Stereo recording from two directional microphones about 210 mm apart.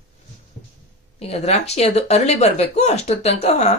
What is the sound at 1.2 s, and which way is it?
Speech, 30° left (ahead or behind).